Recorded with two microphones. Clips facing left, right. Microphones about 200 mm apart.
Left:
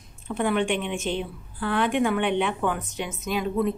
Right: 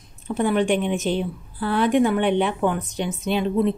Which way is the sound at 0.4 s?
35° right (ahead or behind).